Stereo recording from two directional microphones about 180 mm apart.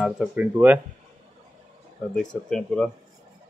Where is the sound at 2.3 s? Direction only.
Centre (ahead or behind).